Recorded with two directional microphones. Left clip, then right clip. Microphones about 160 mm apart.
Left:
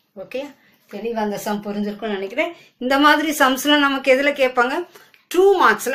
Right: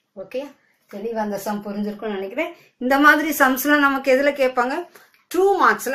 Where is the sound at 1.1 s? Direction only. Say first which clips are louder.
Left 2 dB; 10° right (ahead or behind).